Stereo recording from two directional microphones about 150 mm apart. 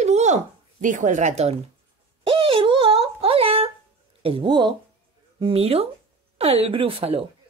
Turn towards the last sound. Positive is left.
turn(degrees=-40)  # may be behind; listen again after turning